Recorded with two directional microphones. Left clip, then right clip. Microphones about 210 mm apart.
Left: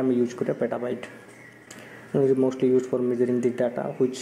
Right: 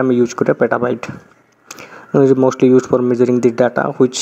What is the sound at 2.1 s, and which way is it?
Speech, 30° right (ahead or behind).